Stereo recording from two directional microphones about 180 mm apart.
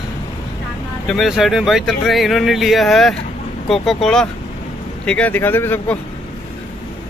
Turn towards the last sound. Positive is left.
turn(degrees=10)  # may be behind; listen again after turning